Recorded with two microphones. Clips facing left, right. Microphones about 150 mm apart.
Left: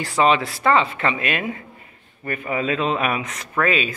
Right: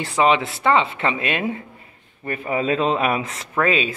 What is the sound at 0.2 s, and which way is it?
Speech, 20° right (ahead or behind).